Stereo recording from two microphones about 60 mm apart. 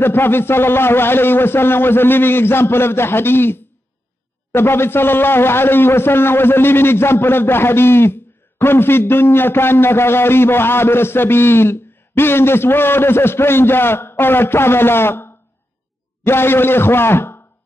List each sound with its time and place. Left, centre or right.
0.0 s a man's voice: left